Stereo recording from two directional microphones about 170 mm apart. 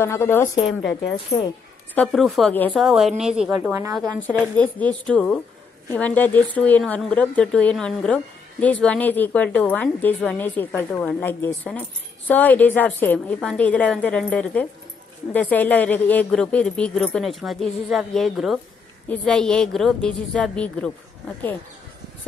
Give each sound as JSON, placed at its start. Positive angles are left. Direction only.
{"t": 0.0, "sound": "speech", "side_deg": 15}
{"t": 1.1, "sound": "speech", "side_deg": 30}
{"t": 2.0, "sound": "speech", "side_deg": 0}
{"t": 3.6, "sound": "a woman's voice", "side_deg": -15}
{"t": 4.6, "sound": "speech", "side_deg": 10}